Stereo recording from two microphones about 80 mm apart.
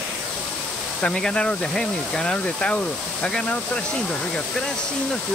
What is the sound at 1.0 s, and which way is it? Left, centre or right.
Speech, centre.